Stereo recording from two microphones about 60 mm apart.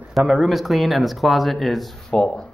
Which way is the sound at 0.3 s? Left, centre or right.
Centre.